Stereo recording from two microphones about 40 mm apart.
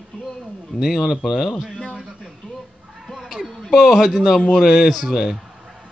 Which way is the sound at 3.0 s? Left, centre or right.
Centre.